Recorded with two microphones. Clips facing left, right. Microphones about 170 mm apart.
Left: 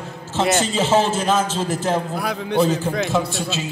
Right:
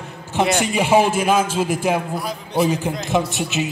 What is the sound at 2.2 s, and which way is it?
Speech, 65° left (ahead or behind).